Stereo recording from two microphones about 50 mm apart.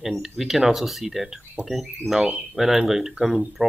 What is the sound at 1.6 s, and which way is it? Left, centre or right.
Speech, right.